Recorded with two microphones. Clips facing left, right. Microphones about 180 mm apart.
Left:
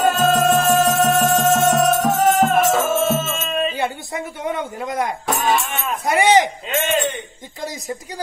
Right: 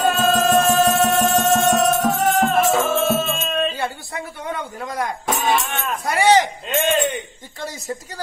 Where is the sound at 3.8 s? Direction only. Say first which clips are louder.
Left 3 dB; 20° left (ahead or behind).